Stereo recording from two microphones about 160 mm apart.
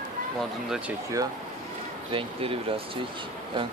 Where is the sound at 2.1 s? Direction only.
35° right (ahead or behind).